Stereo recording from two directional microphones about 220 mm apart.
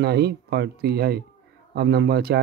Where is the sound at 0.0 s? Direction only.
45° right (ahead or behind).